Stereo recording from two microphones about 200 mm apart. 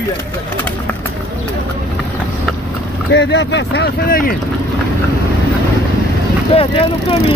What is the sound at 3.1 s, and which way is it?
Speech, 60° left (ahead or behind).